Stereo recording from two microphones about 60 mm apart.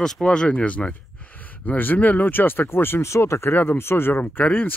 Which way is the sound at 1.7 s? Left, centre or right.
Left.